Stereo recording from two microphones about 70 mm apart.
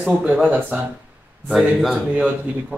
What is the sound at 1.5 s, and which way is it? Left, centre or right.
Speech, centre.